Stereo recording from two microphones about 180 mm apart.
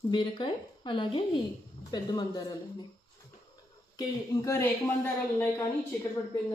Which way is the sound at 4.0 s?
20° left (ahead or behind).